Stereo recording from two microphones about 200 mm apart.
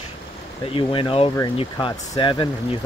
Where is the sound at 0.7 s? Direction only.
25° left (ahead or behind).